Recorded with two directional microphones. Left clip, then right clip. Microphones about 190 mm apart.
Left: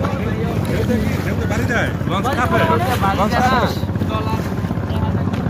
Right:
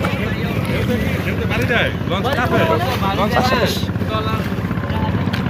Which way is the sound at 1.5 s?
55° left (ahead or behind).